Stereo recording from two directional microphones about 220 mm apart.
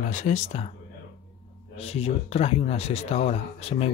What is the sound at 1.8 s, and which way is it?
Speech, 25° left (ahead or behind).